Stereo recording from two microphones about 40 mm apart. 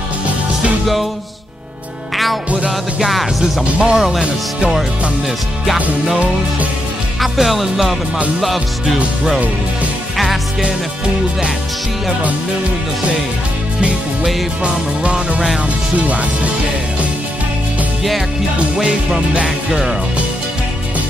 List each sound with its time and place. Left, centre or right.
3.0 s music: centre
7.2 s music: centre
14.6 s music: right
16.0 s speech: right
19.4 s music: centre